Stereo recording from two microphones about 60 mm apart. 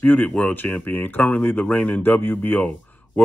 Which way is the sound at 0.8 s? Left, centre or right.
Left.